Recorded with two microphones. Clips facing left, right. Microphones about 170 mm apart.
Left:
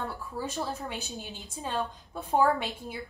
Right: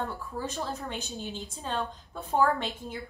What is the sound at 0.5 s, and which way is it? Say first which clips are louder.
Speech: left 1 dB; 10° left (ahead or behind).